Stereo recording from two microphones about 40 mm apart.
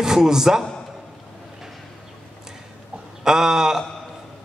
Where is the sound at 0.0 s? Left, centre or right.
Centre.